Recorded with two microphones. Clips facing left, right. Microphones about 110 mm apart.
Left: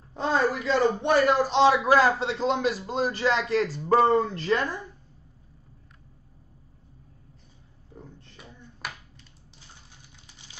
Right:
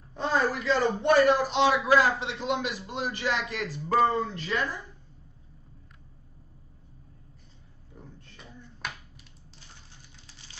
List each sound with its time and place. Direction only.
0.1 s a man's voice: 25° left (ahead or behind)
1.7 s a man's voice: 45° left (ahead or behind)
8.8 s finger snapping: 5° left (ahead or behind)